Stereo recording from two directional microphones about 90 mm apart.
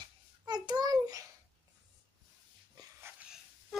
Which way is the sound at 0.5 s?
50° right (ahead or behind).